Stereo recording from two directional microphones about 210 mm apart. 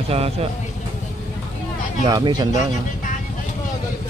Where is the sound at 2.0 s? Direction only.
20° right (ahead or behind).